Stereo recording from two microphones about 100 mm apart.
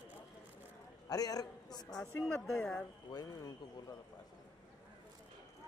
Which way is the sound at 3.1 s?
40° left (ahead or behind).